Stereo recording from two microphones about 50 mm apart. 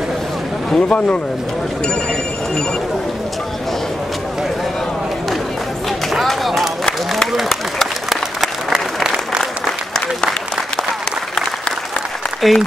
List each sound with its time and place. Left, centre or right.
0.7 s speech: left
5.9 s run: centre
7.3 s applause: centre
8.7 s applause: centre
12.4 s speech: centre